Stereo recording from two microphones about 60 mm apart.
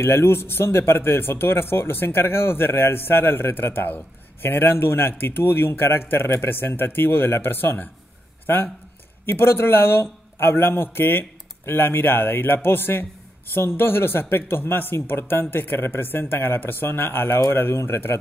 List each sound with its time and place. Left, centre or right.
0.0 s speech: left